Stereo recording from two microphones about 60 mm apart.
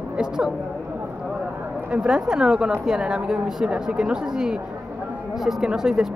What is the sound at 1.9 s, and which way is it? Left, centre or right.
Speech, centre.